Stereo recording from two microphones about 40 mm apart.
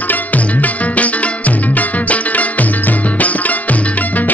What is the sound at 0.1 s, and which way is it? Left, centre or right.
Music, left.